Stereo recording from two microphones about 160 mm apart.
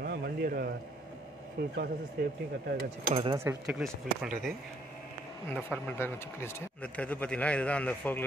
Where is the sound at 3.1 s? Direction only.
30° right (ahead or behind).